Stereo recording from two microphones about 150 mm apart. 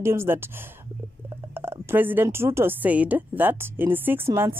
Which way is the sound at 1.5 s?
15° right (ahead or behind).